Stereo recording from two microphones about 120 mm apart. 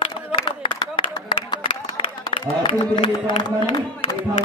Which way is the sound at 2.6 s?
50° left (ahead or behind).